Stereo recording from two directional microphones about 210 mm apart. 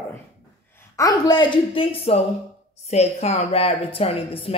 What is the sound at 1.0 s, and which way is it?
Speech, 15° left (ahead or behind).